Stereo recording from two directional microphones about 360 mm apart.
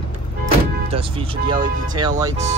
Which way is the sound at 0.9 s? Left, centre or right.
Centre.